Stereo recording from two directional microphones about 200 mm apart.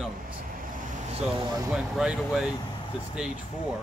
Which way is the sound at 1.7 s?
5° right (ahead or behind).